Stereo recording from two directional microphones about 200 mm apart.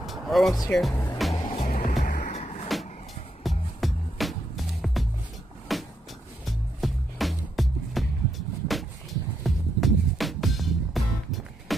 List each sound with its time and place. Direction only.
0.0 s music: centre (ahead or behind)
0.7 s speech: centre (ahead or behind)
1.3 s music: 25° left (ahead or behind)
2.0 s vehicle: 45° left (ahead or behind)
3.4 s music: centre (ahead or behind)
5.7 s vehicle: centre (ahead or behind)
6.4 s music: centre (ahead or behind)